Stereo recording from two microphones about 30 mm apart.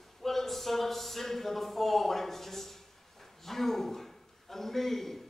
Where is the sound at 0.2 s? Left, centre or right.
Centre.